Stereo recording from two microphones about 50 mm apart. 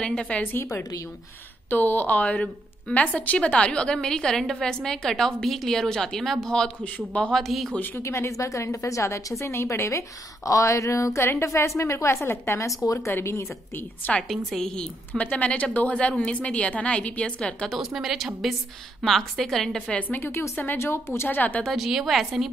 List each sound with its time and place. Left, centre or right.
0.0 s a woman's voice: centre
0.5 s a woman's voice: left; by 7.7 s centre
8.0 s a woman's voice: left
9.4 s a woman's voice: left
11.4 s a woman's voice: left
13.2 s a woman's voice: left
14.2 s a woman's voice: centre
14.7 s a woman's voice: centre
15.2 s a woman's voice: left
17.7 s a woman's voice: centre
20.2 s a woman's voice: left
20.7 s a woman's voice: left
21.3 s speech: left
21.7 s a woman's voice: centre